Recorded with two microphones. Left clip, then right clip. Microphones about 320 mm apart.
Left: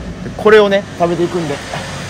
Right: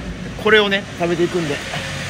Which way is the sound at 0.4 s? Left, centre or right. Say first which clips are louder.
Left 6 dB; left.